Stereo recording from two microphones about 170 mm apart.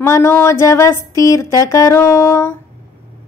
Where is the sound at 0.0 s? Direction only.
15° left (ahead or behind).